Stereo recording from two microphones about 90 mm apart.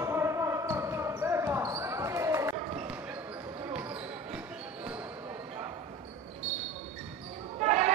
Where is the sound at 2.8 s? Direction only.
15° right (ahead or behind).